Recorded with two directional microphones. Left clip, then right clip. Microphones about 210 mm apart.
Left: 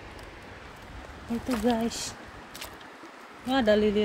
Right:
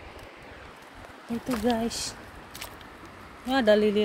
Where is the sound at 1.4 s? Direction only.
15° right (ahead or behind).